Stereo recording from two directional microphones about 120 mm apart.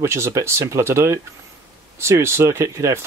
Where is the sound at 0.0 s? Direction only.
25° right (ahead or behind).